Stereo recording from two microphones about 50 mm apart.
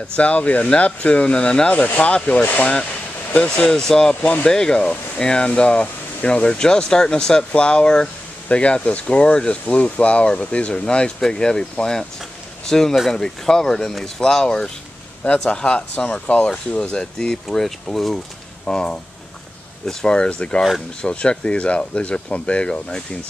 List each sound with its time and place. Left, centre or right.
0.1 s speech: left
3.3 s speech: centre
4.1 s speech: left
4.5 s speech: centre
18.7 s speech: centre